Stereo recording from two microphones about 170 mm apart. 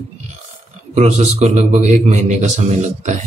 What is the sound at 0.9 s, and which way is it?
A man's voice, 40° right (ahead or behind).